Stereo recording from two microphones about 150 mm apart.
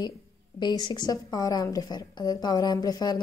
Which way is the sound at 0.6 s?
30° left (ahead or behind).